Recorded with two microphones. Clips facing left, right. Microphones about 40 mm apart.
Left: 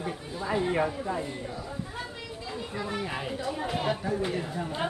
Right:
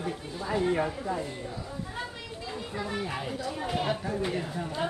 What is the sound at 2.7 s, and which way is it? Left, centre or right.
Speech, centre.